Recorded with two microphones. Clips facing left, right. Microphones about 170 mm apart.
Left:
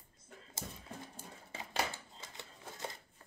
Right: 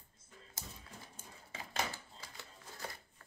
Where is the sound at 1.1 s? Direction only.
35° left (ahead or behind).